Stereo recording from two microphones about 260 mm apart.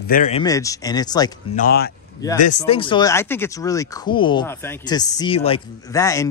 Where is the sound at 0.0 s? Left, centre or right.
Left.